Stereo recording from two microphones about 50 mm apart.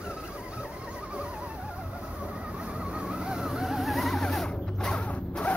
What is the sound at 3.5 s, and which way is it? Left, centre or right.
Vehicle, centre.